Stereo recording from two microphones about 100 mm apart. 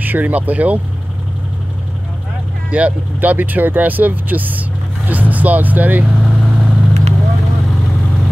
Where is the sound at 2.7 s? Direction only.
15° right (ahead or behind).